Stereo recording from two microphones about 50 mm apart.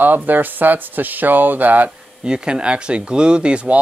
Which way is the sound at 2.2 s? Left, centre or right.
Centre.